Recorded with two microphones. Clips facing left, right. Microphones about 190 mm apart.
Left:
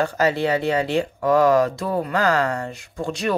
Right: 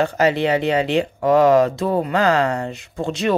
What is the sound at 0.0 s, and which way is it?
Speech, 20° right (ahead or behind).